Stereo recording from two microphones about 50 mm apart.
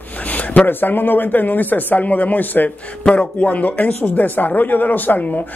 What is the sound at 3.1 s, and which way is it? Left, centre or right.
Speech, left.